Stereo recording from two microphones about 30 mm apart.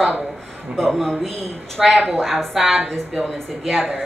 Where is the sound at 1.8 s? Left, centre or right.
Centre.